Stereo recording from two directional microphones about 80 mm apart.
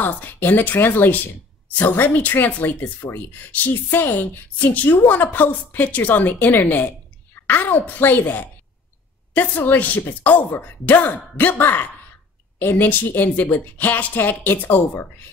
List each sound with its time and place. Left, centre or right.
0.0 s speech: left